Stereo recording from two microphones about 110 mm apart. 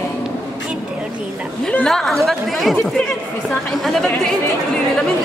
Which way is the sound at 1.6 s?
5° left (ahead or behind).